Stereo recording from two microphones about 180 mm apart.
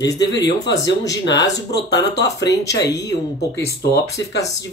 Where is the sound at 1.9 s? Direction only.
20° left (ahead or behind).